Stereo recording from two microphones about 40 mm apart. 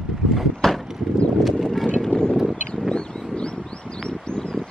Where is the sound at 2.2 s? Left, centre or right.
Centre.